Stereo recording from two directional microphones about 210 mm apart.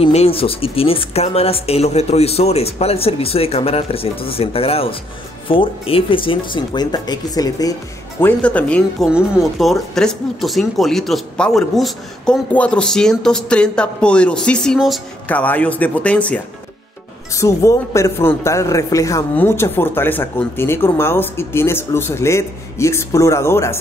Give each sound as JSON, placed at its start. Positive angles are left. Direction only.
{"t": 0.0, "sound": "speech", "side_deg": 30}
{"t": 8.2, "sound": "a man's voice", "side_deg": 5}